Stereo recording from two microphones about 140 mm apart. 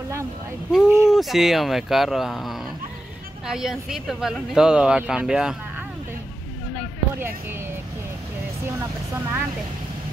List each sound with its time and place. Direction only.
0.7 s speech: 5° right (ahead or behind)
8.6 s speech: 20° right (ahead or behind)